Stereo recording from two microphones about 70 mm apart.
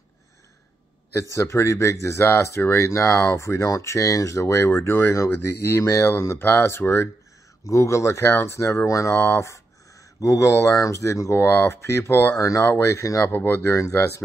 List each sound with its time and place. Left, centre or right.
1.3 s speech: left
7.6 s speech: left
11.4 s speech: left
12.4 s speech: left
12.6 s speech: left
13.0 s speech: left
13.3 s speech: left